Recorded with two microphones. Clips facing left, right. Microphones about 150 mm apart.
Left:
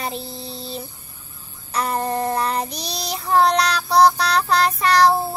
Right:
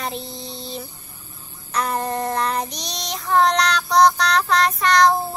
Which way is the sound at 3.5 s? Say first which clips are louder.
Even; 10° left (ahead or behind).